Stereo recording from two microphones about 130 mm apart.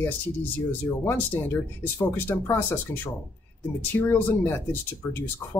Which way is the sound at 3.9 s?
15° left (ahead or behind).